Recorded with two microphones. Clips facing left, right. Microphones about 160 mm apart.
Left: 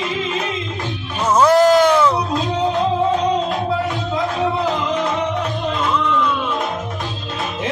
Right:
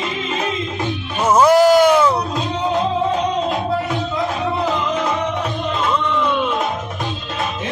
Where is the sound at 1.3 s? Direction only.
10° right (ahead or behind).